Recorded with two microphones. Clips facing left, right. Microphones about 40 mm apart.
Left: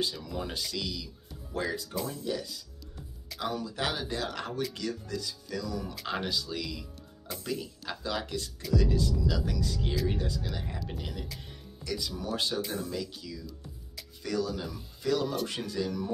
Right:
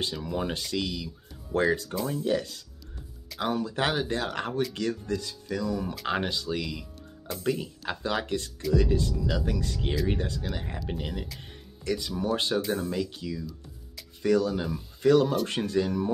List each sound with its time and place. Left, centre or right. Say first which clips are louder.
0.0 s speech: right 3 dB; right
3.3 s speech: right 5 dB; right
10.5 s speech: right 4 dB; right